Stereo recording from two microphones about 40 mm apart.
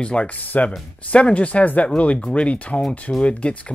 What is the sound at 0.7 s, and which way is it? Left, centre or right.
Speech, left.